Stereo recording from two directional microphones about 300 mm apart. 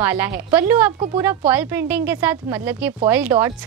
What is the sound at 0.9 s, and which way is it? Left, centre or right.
Speech, centre.